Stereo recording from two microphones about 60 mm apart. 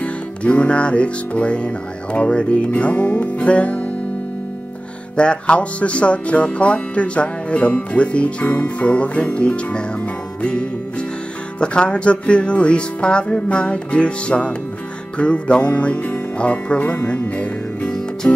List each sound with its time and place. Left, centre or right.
0.0 s music: left
5.1 s music: centre
11.6 s speech: centre
15.1 s music: centre
17.8 s music: centre